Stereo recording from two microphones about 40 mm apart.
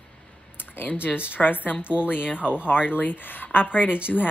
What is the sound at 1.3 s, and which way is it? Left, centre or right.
Speech, left.